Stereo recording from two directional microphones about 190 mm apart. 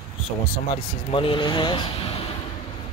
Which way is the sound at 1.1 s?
25° left (ahead or behind).